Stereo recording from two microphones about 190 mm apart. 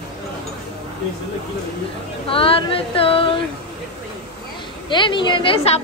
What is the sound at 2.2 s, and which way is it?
Speech, 30° left (ahead or behind).